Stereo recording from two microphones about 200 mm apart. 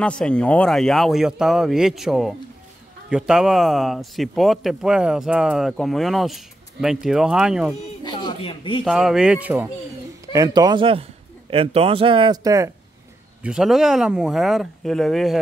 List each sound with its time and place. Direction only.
0.0 s a man's voice: 5° left (ahead or behind)
8.0 s speech: 20° left (ahead or behind)
8.8 s a man's voice: centre (ahead or behind)
10.3 s speech: 20° right (ahead or behind)
13.4 s a man's voice: 5° right (ahead or behind)